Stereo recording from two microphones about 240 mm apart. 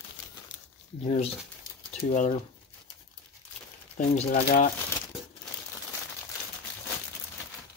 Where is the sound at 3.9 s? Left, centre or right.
Left.